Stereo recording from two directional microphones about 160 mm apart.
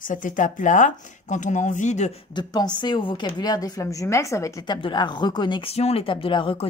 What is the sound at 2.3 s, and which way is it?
A woman's voice, 25° left (ahead or behind).